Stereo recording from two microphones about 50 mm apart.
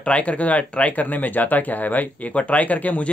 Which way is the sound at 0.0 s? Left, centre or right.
Left.